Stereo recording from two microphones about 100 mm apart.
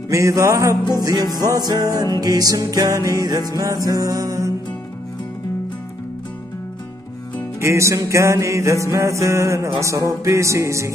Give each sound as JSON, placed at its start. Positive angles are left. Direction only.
{"t": 0.1, "sound": "music", "side_deg": -30}
{"t": 7.6, "sound": "music", "side_deg": -30}